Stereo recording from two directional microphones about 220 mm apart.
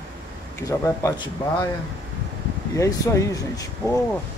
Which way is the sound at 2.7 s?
15° left (ahead or behind).